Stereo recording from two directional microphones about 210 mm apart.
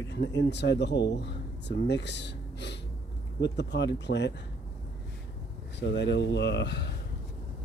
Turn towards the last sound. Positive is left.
turn(degrees=50)  # may be behind; listen again after turning